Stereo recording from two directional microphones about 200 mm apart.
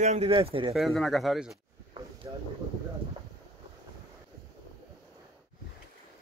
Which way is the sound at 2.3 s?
20° right (ahead or behind).